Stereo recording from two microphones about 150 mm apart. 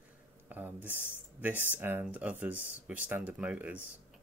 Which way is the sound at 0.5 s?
10° right (ahead or behind).